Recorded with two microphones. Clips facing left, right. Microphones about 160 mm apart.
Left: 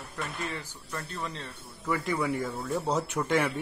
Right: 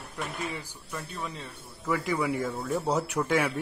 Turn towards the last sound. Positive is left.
turn(degrees=-5)  # may be behind; listen again after turning